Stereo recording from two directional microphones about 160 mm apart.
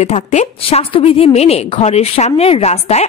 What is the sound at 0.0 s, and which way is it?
A woman's voice, 45° left (ahead or behind).